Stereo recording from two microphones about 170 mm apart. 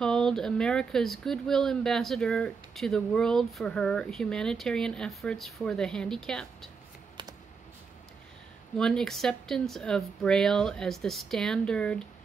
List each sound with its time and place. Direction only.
0.0 s speech: 5° left (ahead or behind)
8.7 s speech: 5° left (ahead or behind)